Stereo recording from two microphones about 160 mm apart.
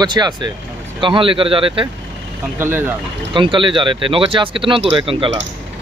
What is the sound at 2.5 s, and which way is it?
Speech, 15° right (ahead or behind).